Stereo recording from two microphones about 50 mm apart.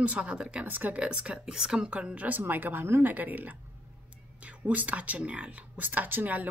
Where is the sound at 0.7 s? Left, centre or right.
Right.